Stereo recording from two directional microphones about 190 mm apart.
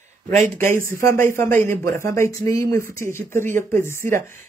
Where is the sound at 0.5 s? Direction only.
15° left (ahead or behind).